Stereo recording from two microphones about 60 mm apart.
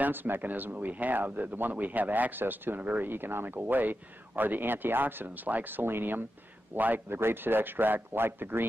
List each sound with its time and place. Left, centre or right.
0.0 s speech: right